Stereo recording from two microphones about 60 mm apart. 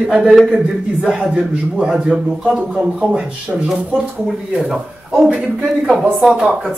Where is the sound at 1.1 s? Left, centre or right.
Centre.